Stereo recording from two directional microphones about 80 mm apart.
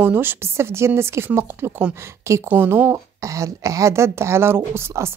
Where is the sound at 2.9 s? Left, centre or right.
Right.